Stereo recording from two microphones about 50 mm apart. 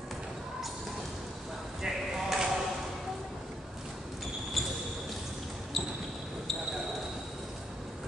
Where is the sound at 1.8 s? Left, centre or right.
Centre.